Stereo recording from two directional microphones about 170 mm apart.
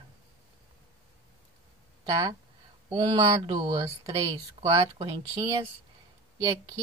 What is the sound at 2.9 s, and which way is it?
Speech, 30° right (ahead or behind).